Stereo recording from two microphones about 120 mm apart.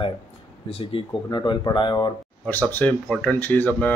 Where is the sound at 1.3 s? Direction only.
40° left (ahead or behind).